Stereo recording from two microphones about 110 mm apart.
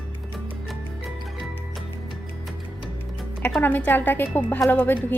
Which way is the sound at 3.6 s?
20° left (ahead or behind).